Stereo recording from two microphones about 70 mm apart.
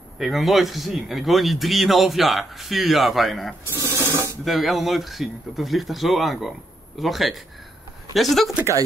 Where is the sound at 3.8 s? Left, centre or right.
Left.